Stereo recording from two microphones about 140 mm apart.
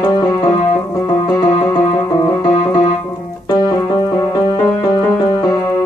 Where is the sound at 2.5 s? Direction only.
40° left (ahead or behind).